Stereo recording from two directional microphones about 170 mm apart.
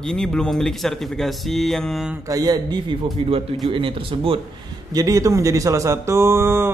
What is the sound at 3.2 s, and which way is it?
Speech, 35° right (ahead or behind).